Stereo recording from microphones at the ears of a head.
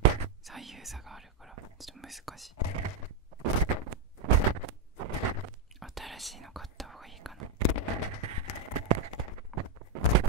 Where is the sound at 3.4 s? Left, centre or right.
Right.